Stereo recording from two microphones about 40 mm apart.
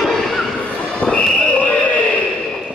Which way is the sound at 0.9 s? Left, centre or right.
Left.